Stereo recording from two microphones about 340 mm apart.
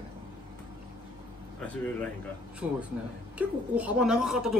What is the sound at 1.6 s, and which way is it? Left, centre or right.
Speech, centre.